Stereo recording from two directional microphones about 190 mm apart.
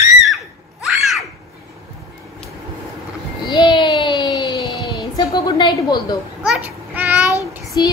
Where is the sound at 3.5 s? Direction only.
25° left (ahead or behind).